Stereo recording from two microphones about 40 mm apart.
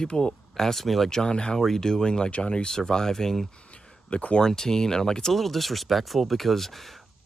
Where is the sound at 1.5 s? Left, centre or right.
Centre.